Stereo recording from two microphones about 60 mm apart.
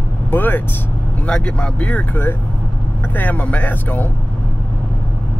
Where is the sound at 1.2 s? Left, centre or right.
Centre.